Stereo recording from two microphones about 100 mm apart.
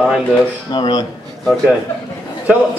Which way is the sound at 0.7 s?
50° left (ahead or behind).